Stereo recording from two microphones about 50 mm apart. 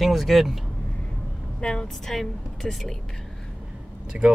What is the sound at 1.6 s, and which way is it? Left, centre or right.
Speech, centre.